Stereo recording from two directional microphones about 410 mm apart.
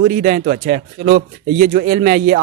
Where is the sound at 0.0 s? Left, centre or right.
Centre.